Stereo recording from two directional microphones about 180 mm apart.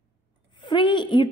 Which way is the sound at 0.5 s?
25° left (ahead or behind).